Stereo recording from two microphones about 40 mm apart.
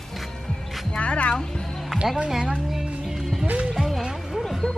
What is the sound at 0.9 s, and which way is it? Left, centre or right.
Speech, left.